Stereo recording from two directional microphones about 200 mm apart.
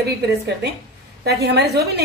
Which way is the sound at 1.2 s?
55° right (ahead or behind).